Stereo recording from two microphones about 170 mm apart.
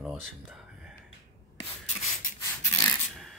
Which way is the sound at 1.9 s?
20° left (ahead or behind).